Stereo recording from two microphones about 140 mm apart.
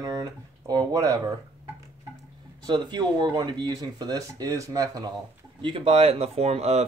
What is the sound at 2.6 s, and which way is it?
Speech, 30° right (ahead or behind).